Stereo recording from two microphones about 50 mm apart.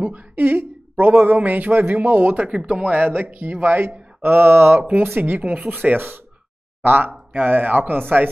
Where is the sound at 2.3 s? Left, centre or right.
Right.